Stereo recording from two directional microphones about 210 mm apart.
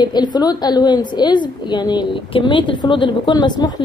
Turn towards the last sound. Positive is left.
turn(degrees=20)  # may be behind; listen again after turning